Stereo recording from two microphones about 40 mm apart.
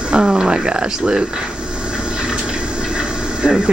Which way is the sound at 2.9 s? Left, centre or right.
Right.